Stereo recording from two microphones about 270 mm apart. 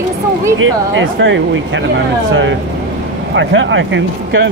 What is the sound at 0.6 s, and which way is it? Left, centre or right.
Speech, right.